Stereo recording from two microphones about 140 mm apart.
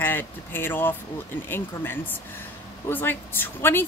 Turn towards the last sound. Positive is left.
turn(degrees=15)  # may be behind; listen again after turning